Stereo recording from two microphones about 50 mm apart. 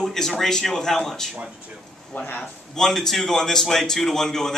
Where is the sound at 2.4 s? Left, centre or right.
Centre.